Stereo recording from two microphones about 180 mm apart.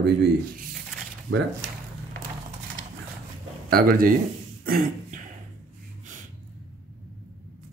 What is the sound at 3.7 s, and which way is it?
Speech, 55° right (ahead or behind).